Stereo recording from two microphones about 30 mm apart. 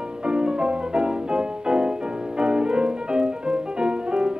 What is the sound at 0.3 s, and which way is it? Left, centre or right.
Music, right.